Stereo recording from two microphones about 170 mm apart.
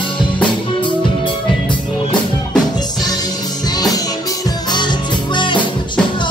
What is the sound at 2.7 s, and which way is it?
Music, 25° left (ahead or behind).